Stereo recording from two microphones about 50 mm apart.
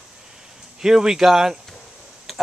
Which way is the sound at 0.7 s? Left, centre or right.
Centre.